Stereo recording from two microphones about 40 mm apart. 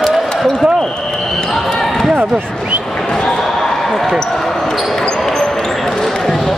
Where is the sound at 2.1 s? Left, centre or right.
Right.